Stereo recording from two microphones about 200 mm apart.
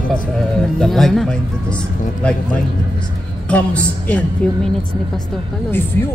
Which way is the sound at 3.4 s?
5° left (ahead or behind).